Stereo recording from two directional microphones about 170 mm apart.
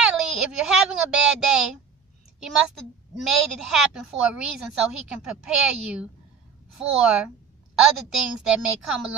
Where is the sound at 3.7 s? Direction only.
5° right (ahead or behind).